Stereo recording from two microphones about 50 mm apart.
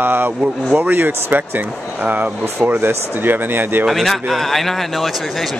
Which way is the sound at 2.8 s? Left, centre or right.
Right.